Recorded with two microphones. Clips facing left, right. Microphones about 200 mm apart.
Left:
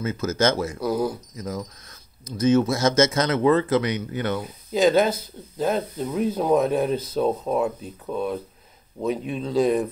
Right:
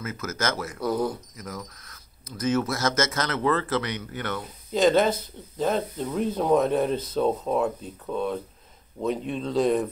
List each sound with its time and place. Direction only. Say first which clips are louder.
0.0 s speech: left 7 dB; 25° left (ahead or behind)
0.7 s speech: left 2 dB; 5° left (ahead or behind)
1.3 s speech: left 6 dB; 25° left (ahead or behind)
4.4 s speech: even; 5° left (ahead or behind)